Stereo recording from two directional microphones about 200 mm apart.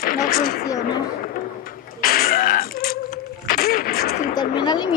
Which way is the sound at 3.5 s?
50° left (ahead or behind).